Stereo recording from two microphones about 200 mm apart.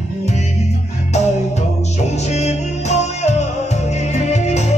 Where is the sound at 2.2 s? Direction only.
35° left (ahead or behind).